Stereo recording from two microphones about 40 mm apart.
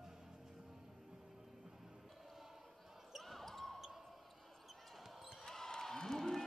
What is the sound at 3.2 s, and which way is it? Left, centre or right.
Basketball bounce, centre.